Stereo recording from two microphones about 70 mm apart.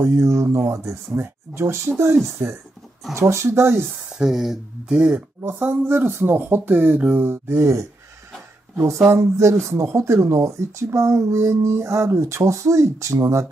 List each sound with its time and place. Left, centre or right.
0.0 s speech: right
4.1 s speech: centre
4.9 s speech: centre
5.4 s speech: right